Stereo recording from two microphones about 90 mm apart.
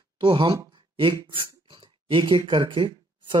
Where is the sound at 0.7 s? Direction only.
65° right (ahead or behind).